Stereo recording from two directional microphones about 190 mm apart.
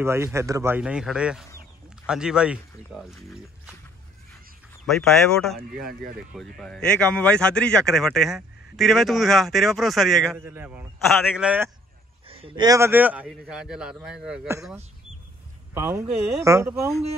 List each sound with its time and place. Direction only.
0.0 s speech: 15° right (ahead or behind)
4.8 s speech: centre (ahead or behind)
10.3 s speech: 10° right (ahead or behind)
11.1 s speech: centre (ahead or behind)
12.3 s speech: 30° right (ahead or behind); by 14.5 s 5° right (ahead or behind)
15.7 s speech: 15° right (ahead or behind)